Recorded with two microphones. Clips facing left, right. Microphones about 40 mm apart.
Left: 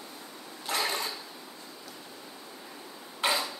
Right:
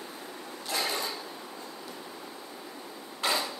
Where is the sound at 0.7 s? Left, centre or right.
Left.